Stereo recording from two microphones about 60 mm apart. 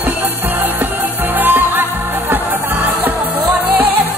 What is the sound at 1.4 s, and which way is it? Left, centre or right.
Music, right.